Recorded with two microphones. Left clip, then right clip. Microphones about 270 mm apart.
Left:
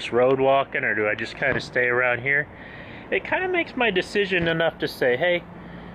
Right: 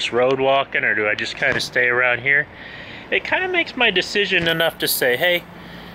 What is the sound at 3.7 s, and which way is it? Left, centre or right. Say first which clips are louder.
Speech: right 4 dB; centre.